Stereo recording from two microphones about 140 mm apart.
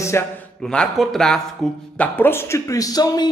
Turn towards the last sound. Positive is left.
turn(degrees=25)  # may be behind; listen again after turning